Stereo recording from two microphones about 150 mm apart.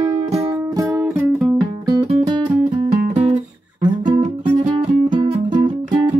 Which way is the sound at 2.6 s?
50° right (ahead or behind).